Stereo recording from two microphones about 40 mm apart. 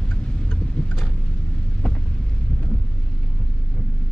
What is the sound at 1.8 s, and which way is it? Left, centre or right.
Vehicle, left.